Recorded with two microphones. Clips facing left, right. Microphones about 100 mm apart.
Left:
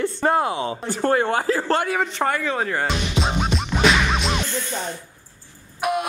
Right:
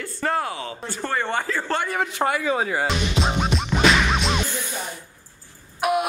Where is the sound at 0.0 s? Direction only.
20° left (ahead or behind).